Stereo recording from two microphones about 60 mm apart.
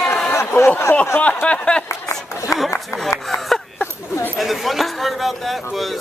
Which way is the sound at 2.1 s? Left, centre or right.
Left.